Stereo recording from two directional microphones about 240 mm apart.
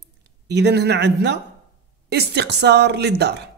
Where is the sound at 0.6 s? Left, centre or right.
Right.